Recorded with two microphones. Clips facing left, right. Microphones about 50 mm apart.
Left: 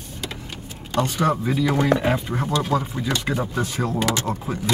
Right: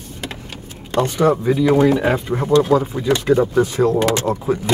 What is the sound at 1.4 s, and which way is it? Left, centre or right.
Speech, centre.